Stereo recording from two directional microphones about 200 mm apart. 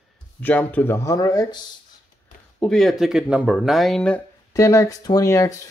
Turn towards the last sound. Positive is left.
turn(degrees=15)  # may be behind; listen again after turning